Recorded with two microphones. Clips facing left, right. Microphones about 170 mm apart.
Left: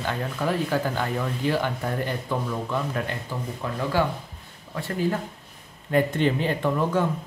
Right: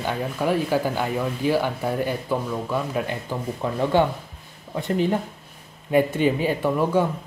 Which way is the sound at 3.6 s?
25° right (ahead or behind).